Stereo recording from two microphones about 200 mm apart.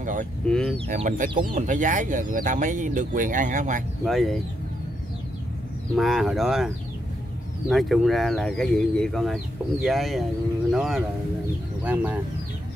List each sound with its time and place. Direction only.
0.0 s a sound: 40° right (ahead or behind)
0.9 s speech: 40° right (ahead or behind)
4.0 s speech: centre (ahead or behind)
5.9 s speech: centre (ahead or behind)
7.7 s speech: centre (ahead or behind)